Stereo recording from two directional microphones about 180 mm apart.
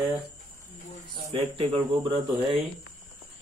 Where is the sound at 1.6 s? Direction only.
35° right (ahead or behind).